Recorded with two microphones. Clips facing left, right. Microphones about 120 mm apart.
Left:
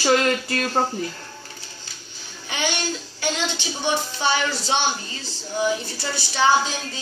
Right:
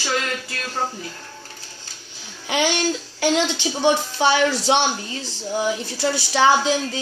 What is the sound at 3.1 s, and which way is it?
A woman's voice, 85° right.